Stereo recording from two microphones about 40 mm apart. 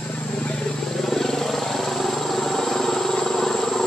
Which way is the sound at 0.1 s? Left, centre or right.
Left.